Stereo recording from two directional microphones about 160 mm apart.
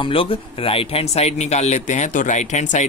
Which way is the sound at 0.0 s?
35° left (ahead or behind).